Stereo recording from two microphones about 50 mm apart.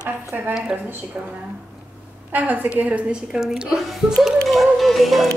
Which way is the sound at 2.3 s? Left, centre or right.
Right.